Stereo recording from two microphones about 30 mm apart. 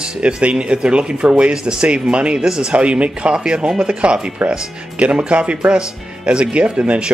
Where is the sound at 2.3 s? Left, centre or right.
Right.